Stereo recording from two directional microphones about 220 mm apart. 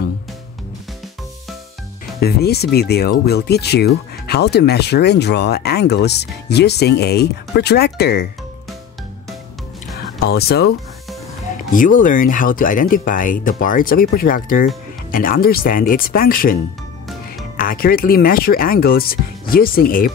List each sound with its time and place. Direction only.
2.1 s speech: 45° left (ahead or behind)
10.2 s speech: 45° left (ahead or behind)
11.7 s speech: 35° left (ahead or behind)
17.6 s speech: 40° left (ahead or behind)